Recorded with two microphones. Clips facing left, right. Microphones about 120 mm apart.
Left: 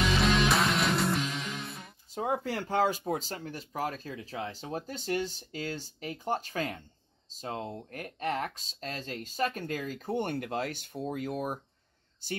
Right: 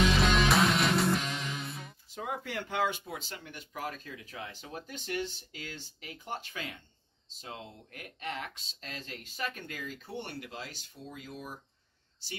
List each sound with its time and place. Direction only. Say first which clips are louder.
0.2 s music: even; centre (ahead or behind)
2.1 s speech: left 6 dB; 35° left (ahead or behind); by 11.6 s 55° left (ahead or behind)